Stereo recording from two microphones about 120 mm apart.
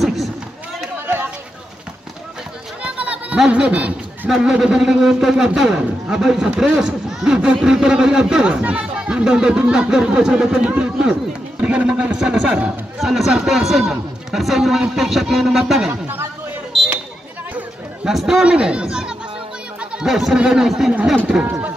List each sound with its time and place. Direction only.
0.0 s a sound: centre (ahead or behind)
2.8 s a man's voice: 10° right (ahead or behind)
15.9 s speech: 20° right (ahead or behind)
17.6 s speech: 5° right (ahead or behind)